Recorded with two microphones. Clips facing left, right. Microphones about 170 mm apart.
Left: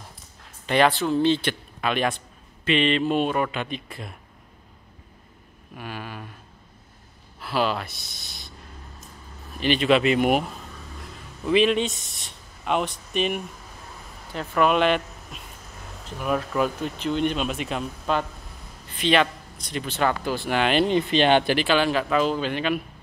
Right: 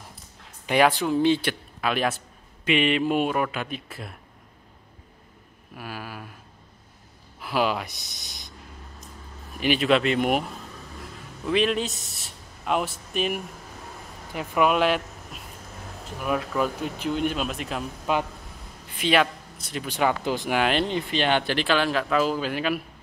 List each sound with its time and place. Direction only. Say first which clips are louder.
0.7 s a man's voice: even; 10° right (ahead or behind)
5.8 s speech: left 1 dB; 5° right (ahead or behind)
7.3 s speech: even; 15° right (ahead or behind)
9.6 s a man's voice: left 1 dB; 10° right (ahead or behind)
9.8 s speech: left 3 dB; 5° left (ahead or behind)
11.4 s a man's voice: left 3 dB; centre (ahead or behind)
16.8 s a man's voice: left 2 dB; 10° right (ahead or behind)
20.8 s speech: left 5 dB; 20° left (ahead or behind)
21.5 s speech: left 2 dB; 5° left (ahead or behind)